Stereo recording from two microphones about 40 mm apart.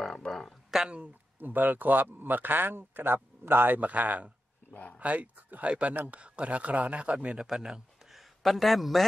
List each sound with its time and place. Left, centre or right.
0.3 s a sound: centre
1.4 s a man's voice: right
3.8 s speech: right
7.3 s speech: centre
8.4 s a man's voice: centre